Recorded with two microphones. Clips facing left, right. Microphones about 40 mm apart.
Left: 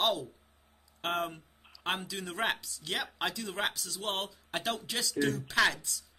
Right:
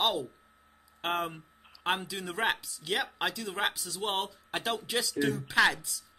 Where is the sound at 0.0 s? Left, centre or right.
Centre.